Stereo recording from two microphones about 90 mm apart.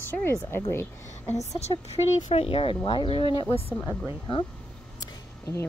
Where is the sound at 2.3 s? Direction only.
90° left.